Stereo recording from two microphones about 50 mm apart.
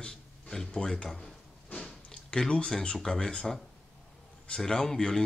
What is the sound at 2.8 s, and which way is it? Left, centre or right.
Speech, left.